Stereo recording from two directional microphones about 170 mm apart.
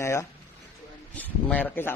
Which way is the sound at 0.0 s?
15° left (ahead or behind).